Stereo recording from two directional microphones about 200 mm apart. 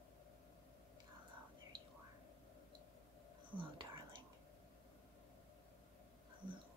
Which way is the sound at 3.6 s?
25° right (ahead or behind).